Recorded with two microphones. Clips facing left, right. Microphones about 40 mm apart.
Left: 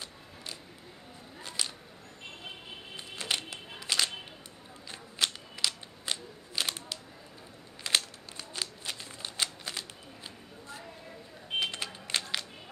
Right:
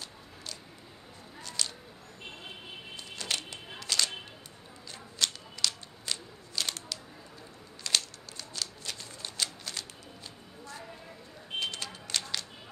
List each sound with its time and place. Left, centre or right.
1.6 s whip: centre
3.0 s music: left
5.2 s a sound: centre
11.7 s music: left